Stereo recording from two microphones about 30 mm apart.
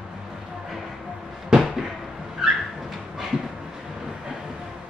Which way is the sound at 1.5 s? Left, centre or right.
Right.